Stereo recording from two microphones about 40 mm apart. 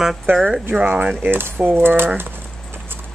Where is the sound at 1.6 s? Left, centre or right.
Right.